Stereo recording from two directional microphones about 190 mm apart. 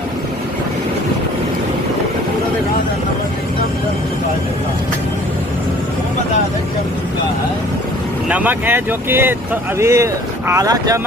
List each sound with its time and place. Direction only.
8.3 s speech: 10° right (ahead or behind)